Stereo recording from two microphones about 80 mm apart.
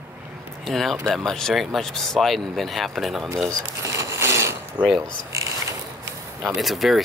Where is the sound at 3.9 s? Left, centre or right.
Right.